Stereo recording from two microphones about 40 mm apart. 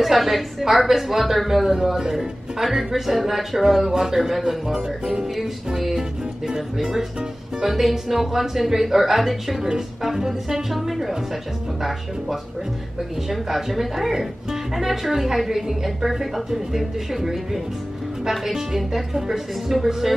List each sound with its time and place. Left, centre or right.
0.0 s a woman's voice: centre
1.7 s a woman's voice: centre
13.3 s speech: centre